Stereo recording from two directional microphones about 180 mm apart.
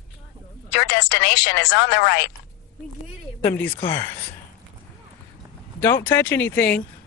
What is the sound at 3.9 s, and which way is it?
Speech, 10° left (ahead or behind).